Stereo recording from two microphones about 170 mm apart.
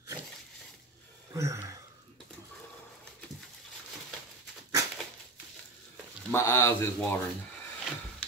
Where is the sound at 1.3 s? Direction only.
20° right (ahead or behind).